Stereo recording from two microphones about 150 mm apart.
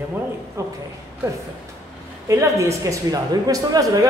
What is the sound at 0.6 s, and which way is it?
Speech, 20° right (ahead or behind).